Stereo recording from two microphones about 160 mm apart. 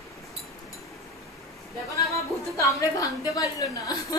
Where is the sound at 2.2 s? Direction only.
20° left (ahead or behind).